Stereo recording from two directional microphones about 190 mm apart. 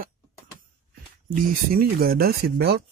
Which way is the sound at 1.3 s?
50° right (ahead or behind).